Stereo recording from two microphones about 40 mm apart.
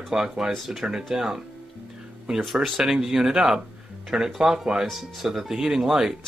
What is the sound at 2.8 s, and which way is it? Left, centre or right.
Speech, centre.